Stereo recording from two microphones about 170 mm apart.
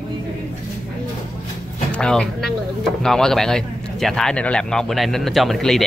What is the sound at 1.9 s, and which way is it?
Speech, 5° left (ahead or behind).